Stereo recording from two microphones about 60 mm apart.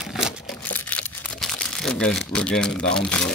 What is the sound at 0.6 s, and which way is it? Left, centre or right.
Crumpling, left.